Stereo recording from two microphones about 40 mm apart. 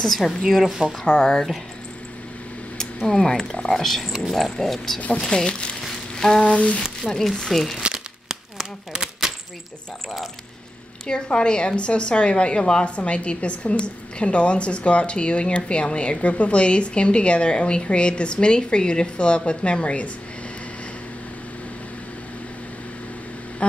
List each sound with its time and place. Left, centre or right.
0.0 s speech: centre
0.7 s speech: centre
1.0 s speech: centre
3.1 s a woman's voice: centre
3.8 s a woman's voice: centre; by 5.8 s left
6.1 s frying: centre
6.4 s a sound: left
7.1 s speech: centre
7.8 s crumpling: right
8.9 s typewriter: centre
11.1 s a woman's voice: left
23.6 s a sound: left